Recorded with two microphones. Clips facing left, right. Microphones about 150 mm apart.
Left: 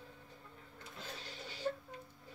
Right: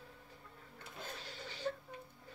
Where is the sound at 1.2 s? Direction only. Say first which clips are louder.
Even; centre (ahead or behind).